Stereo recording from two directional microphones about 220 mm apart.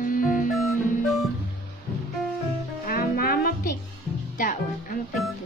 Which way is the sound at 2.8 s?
40° left (ahead or behind).